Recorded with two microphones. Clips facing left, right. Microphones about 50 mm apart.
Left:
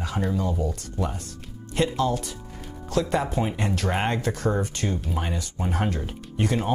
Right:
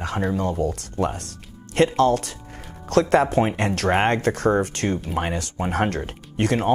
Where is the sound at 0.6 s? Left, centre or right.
Right.